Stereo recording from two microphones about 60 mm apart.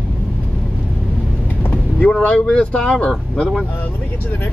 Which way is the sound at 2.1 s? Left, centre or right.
Centre.